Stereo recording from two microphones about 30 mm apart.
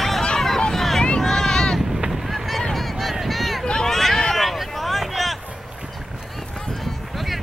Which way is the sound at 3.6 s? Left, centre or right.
Left.